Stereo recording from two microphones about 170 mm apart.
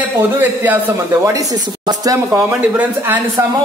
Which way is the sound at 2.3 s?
10° right (ahead or behind).